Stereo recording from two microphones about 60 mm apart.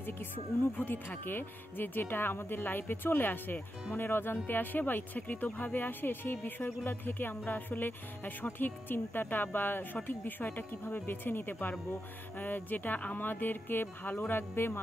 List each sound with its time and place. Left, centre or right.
0.7 s speech: left